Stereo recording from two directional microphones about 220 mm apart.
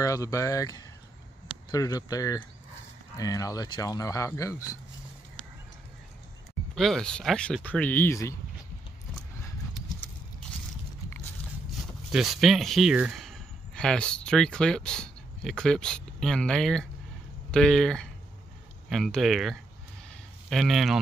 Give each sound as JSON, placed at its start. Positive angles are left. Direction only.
{"t": 0.0, "sound": "speech", "side_deg": 15}
{"t": 6.7, "sound": "speech", "side_deg": 0}
{"t": 12.1, "sound": "speech", "side_deg": 0}